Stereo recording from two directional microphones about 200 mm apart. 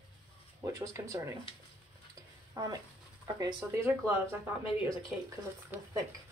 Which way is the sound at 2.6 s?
20° right (ahead or behind).